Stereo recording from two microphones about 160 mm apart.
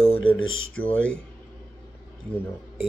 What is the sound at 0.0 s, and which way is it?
Mantra, 35° left (ahead or behind).